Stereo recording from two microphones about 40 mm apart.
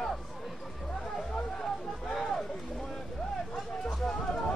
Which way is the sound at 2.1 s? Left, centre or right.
Centre.